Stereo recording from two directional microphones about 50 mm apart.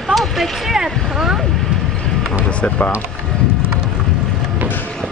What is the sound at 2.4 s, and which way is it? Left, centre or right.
Speech, left.